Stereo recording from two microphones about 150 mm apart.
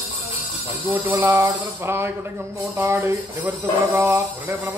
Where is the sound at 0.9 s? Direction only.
15° right (ahead or behind).